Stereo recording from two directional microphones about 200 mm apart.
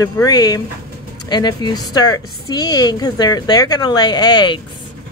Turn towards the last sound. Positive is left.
turn(degrees=20)  # may be behind; listen again after turning